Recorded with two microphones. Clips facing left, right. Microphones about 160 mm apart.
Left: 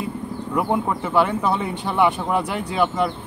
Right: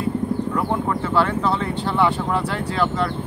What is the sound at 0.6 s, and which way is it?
Speech, 15° left (ahead or behind).